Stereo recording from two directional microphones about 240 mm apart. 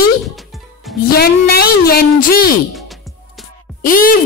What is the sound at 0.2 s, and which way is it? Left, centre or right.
Music, centre.